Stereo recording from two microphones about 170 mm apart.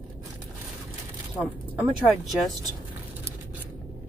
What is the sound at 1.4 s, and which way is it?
Speech, 10° right (ahead or behind).